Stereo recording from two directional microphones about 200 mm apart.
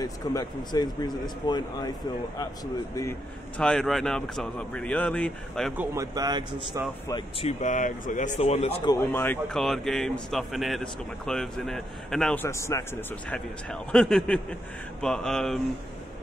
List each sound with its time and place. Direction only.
0.0 s speech: 20° left (ahead or behind)
3.5 s a man's voice: 5° left (ahead or behind)
5.8 s speech: 15° right (ahead or behind)
7.1 s speech: 25° left (ahead or behind)
8.8 s a man's voice: 15° left (ahead or behind)
13.3 s a man's voice: 5° left (ahead or behind)